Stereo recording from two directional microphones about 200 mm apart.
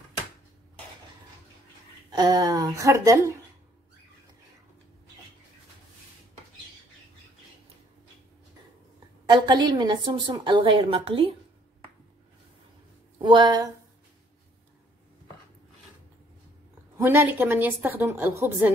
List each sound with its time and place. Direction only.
2.0 s a woman's voice: 20° right (ahead or behind)
9.2 s a woman's voice: 20° right (ahead or behind)
13.2 s a woman's voice: 25° right (ahead or behind)
17.0 s a woman's voice: 10° right (ahead or behind)